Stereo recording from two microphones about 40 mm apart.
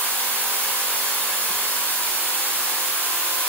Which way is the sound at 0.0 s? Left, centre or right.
Left.